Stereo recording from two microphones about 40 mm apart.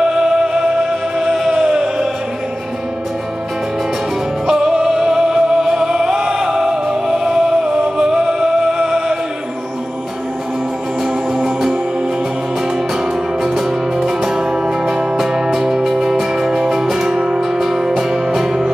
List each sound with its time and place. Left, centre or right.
0.0 s music: centre
4.5 s music: centre
11.3 s music: centre
13.4 s music: centre
17.4 s music: centre